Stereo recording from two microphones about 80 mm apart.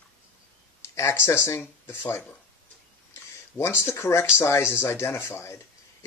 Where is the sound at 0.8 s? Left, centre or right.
Left.